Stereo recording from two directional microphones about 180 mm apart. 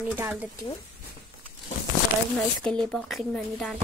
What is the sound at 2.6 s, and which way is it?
A child's voice, 5° left (ahead or behind).